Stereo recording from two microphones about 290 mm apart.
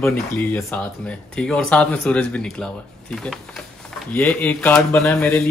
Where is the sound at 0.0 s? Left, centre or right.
Centre.